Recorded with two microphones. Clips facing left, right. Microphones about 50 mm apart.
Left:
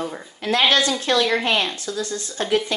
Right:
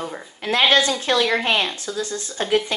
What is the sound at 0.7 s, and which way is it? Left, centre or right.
Speech, right.